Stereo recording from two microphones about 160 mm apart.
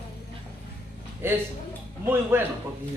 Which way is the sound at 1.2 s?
15° right (ahead or behind).